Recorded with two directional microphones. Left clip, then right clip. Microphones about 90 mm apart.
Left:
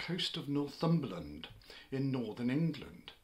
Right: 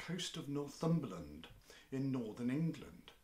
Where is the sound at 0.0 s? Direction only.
10° left (ahead or behind).